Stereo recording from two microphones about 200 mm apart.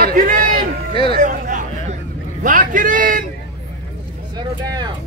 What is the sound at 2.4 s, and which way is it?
Speech, 40° right (ahead or behind).